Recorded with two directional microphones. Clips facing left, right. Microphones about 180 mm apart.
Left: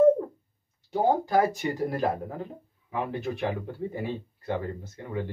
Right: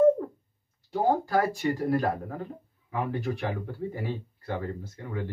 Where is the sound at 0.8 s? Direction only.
20° left (ahead or behind).